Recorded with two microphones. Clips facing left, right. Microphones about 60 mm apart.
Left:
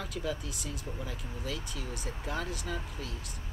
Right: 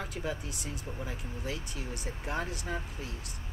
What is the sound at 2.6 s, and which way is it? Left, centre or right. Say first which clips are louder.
Speech: right 1 dB; right.